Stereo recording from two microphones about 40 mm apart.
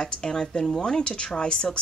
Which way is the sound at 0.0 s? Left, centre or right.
Left.